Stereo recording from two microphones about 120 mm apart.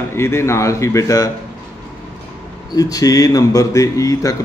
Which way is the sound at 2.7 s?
30° left (ahead or behind).